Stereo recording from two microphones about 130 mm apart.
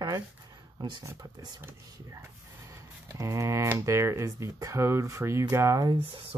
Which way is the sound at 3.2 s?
25° right (ahead or behind).